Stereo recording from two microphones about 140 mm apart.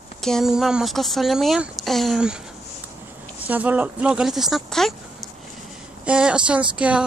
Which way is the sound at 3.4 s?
10° right (ahead or behind).